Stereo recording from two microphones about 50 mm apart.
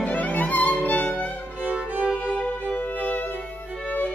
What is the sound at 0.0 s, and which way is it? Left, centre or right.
Music, left.